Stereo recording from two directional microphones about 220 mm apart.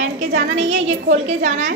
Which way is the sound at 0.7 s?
30° right (ahead or behind).